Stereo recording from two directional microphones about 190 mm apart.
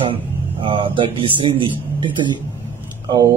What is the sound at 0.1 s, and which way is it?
Speech, 25° right (ahead or behind).